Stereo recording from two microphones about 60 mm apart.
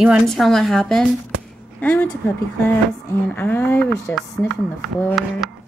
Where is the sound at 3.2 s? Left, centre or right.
Left.